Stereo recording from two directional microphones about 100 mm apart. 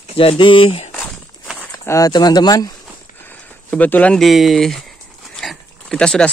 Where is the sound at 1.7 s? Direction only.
35° left (ahead or behind).